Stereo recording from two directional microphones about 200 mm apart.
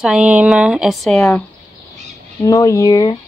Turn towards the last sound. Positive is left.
turn(degrees=20)  # may be behind; listen again after turning